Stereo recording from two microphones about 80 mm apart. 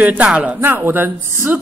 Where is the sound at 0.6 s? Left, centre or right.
Right.